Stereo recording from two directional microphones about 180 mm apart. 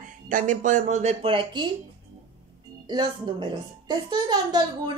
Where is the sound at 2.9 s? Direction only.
25° right (ahead or behind).